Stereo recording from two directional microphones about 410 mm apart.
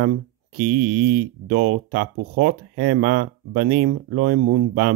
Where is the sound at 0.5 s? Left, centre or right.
Right.